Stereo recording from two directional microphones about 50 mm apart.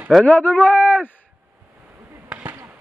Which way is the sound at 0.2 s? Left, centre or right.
Left.